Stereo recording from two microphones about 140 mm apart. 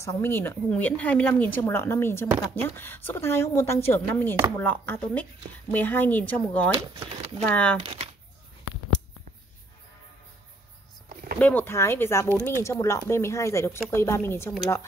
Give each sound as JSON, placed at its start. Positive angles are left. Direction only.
{"t": 0.2, "sound": "a woman's voice", "side_deg": 15}
{"t": 7.8, "sound": "speech", "side_deg": -40}
{"t": 11.3, "sound": "a woman's voice", "side_deg": 10}